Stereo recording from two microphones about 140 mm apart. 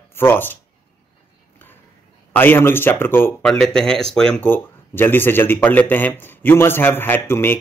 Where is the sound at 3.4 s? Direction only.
5° left (ahead or behind).